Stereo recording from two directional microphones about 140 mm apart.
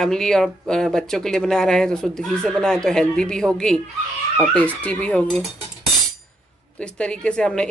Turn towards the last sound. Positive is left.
turn(degrees=5)  # may be behind; listen again after turning